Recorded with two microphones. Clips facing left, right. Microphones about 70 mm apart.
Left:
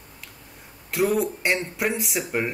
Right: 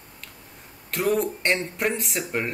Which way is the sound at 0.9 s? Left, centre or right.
Centre.